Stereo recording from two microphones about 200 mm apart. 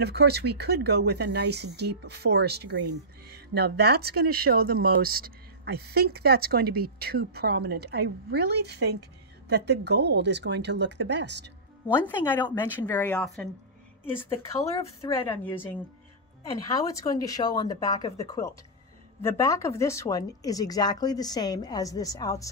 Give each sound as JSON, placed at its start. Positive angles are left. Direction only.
{"t": 0.0, "sound": "speech", "side_deg": -55}
{"t": 11.9, "sound": "speech", "side_deg": 10}
{"t": 15.0, "sound": "speech", "side_deg": 10}